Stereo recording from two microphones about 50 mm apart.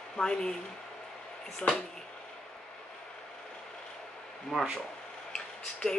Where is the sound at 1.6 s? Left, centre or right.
Left.